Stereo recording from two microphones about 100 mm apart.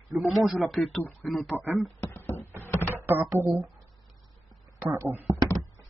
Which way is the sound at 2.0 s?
25° left (ahead or behind).